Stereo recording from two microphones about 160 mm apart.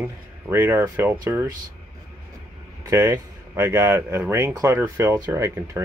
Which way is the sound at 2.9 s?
20° right (ahead or behind).